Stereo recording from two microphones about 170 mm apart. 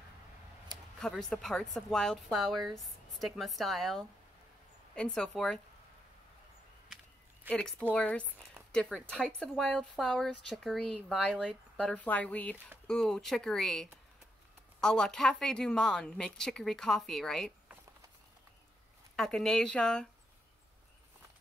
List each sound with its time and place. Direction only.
1.0 s a woman's voice: 5° left (ahead or behind)
7.4 s a woman's voice: 5° left (ahead or behind)
19.1 s a woman's voice: 5° left (ahead or behind)